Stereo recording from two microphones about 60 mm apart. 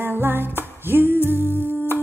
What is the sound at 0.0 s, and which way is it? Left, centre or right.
Music, right.